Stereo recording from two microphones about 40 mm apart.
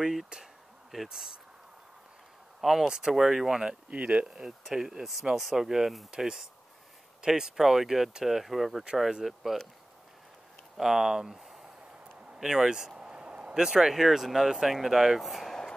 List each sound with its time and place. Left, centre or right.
0.0 s speech: centre
2.6 s speech: centre
3.9 s speech: right; by 6.0 s centre
6.1 s speech: centre
10.8 s speech: centre
13.0 s a sound: right
13.6 s speech: centre